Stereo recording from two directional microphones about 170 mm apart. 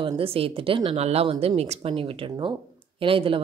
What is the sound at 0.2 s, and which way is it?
Speech, 35° right (ahead or behind).